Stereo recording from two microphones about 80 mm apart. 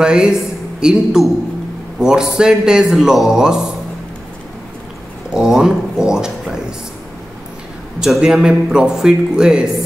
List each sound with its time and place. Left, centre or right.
0.0 s speech: centre
5.3 s a sound: centre
8.0 s speech: centre